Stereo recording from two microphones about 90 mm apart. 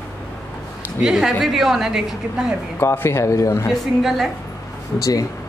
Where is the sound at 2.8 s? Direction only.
30° left (ahead or behind).